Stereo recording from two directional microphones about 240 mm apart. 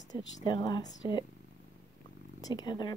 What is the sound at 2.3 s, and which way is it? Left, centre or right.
Speech, centre.